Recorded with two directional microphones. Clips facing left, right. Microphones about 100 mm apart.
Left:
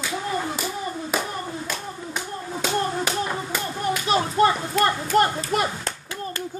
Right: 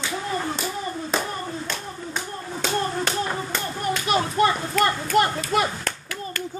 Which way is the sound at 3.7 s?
25° left (ahead or behind).